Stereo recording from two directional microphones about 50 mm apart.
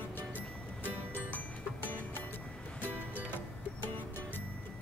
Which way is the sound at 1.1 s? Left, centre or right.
Left.